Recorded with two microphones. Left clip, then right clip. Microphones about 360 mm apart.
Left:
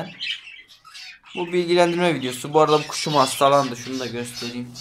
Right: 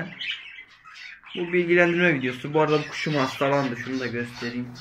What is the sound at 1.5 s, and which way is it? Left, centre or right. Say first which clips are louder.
Speech: left 1 dB; left.